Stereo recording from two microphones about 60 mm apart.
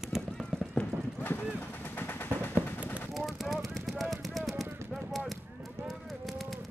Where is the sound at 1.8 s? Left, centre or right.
Left.